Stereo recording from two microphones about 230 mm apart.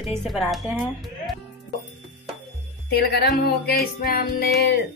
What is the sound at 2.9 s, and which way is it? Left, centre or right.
Music, left.